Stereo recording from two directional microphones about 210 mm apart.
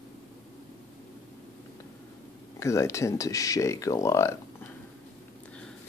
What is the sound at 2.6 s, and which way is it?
Speech, 15° left (ahead or behind).